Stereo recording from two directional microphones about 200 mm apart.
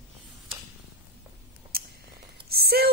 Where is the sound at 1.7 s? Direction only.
50° right (ahead or behind).